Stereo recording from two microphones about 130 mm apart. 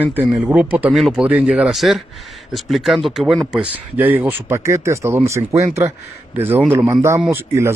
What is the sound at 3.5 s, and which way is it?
Speech, 10° right (ahead or behind).